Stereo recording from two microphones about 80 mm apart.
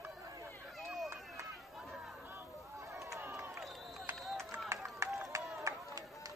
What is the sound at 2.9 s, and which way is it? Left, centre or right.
Run, right.